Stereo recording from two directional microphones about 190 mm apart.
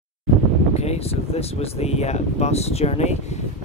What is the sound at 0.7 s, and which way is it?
Speech, 35° left (ahead or behind).